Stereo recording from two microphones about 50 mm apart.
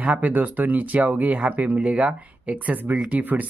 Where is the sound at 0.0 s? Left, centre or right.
Right.